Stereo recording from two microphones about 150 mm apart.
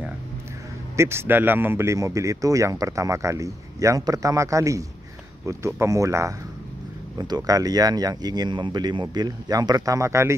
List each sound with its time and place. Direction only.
0.9 s speech: 15° right (ahead or behind)